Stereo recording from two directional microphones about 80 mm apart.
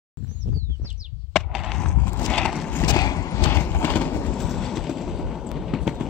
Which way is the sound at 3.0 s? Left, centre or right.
Left.